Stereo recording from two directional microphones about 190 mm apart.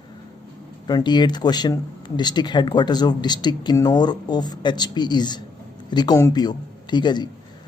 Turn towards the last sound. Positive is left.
turn(degrees=25)  # may be behind; listen again after turning